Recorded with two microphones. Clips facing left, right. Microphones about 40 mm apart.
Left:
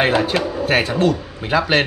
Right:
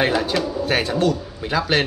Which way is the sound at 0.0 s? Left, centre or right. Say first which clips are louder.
Left 3 dB; left.